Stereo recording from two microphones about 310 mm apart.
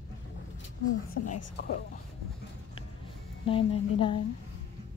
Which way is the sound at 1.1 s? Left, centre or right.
Left.